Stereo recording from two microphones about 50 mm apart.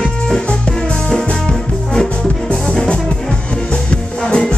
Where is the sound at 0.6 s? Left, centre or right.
Centre.